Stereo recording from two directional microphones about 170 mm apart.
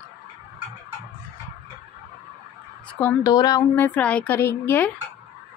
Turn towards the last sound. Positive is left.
turn(degrees=15)  # may be behind; listen again after turning